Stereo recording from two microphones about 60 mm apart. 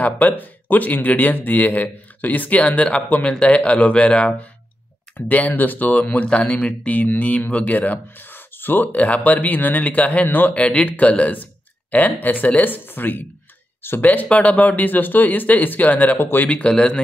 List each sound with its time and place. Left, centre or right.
0.0 s speech: left
16.4 s a man's voice: centre